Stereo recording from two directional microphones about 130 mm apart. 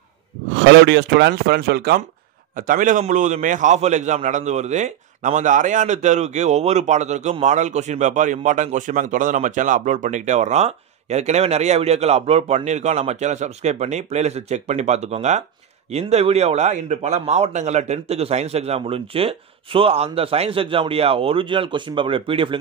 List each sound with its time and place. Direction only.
2.5 s a man's voice: 90° right
3.0 s a man's voice: 70° right (ahead or behind); by 22.6 s 45° right (ahead or behind)